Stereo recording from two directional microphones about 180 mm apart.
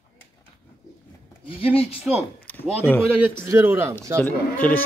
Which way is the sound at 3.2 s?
15° right (ahead or behind).